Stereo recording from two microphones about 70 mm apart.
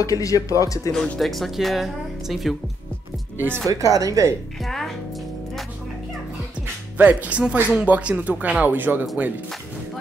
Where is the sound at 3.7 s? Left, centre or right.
Right.